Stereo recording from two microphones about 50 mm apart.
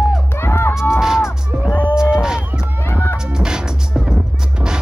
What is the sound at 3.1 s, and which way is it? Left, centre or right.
Music, centre.